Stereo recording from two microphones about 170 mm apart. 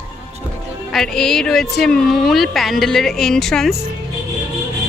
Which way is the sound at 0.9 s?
5° left (ahead or behind).